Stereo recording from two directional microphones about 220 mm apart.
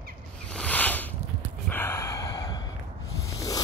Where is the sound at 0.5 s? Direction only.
5° left (ahead or behind).